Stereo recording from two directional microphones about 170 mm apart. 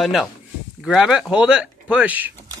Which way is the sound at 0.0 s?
Centre (ahead or behind).